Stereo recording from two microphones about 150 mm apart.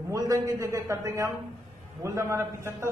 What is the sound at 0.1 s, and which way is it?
A man's voice, 20° right (ahead or behind).